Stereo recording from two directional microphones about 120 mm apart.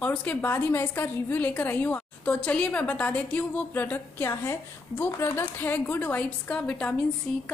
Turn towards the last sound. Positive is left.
turn(degrees=15)  # may be behind; listen again after turning